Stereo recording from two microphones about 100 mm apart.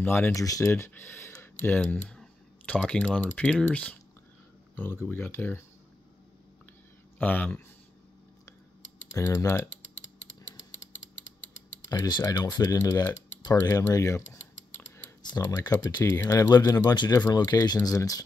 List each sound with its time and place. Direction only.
0.0 s speech: 20° left (ahead or behind)
0.4 s speech: 30° left (ahead or behind)
1.4 s clicking: 15° left (ahead or behind)
3.2 s speech: 5° left (ahead or behind)
7.2 s speech: 15° left (ahead or behind)
9.1 s speech: 35° left (ahead or behind)
12.1 s speech: 40° left (ahead or behind)
16.0 s speech: 30° left (ahead or behind)